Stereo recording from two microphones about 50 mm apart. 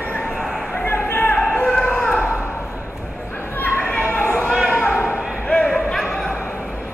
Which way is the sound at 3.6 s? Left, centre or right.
Left.